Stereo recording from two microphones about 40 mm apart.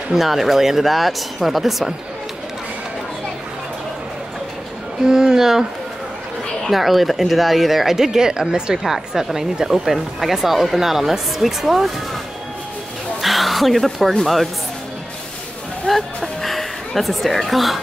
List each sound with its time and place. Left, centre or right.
0.1 s speech: centre
5.0 s speech: centre
6.7 s speech: centre; by 8.7 s right
8.8 s speech: centre
13.2 s a sound: centre
14.2 s speech: centre
15.9 s a sound: centre
16.3 s music: centre